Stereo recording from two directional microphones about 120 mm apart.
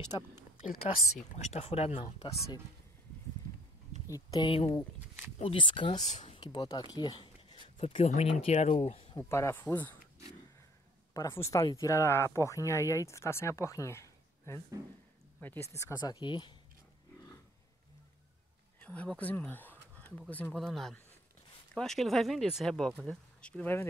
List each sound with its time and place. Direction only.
0.1 s speech: 45° left (ahead or behind)
1.5 s speech: 60° left (ahead or behind)
4.1 s speech: 30° left (ahead or behind)
4.5 s speech: 50° left (ahead or behind)
6.0 s speech: 75° left (ahead or behind)
6.3 s a sound: 35° left (ahead or behind)
7.8 s speech: 55° left (ahead or behind)
9.2 s speech: 20° left (ahead or behind)
11.1 s speech: 25° left (ahead or behind); by 16.5 s 40° left (ahead or behind)
18.8 s a sound: 10° left (ahead or behind)
20.2 s speech: 15° left (ahead or behind)
20.5 s speech: centre (ahead or behind)